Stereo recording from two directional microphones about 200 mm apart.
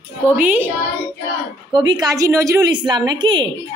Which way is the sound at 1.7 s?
20° right (ahead or behind).